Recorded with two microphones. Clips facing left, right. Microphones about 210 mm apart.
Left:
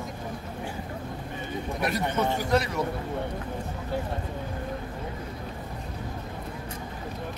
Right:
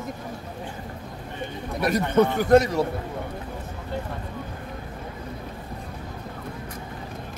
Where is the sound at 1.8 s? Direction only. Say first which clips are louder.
Right 7 dB; 50° right (ahead or behind).